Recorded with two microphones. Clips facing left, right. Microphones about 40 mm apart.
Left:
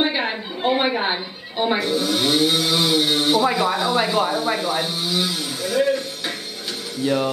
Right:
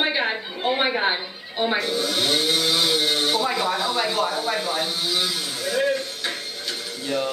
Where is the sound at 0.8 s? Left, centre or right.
Centre.